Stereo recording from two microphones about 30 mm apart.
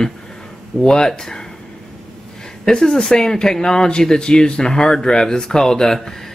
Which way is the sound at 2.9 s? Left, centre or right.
Left.